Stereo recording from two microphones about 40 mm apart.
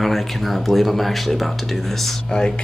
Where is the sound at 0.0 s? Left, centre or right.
Centre.